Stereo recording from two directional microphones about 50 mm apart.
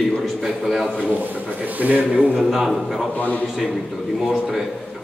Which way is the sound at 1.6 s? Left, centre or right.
Right.